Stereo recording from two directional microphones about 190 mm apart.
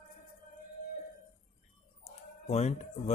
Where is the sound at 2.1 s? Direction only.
35° left (ahead or behind).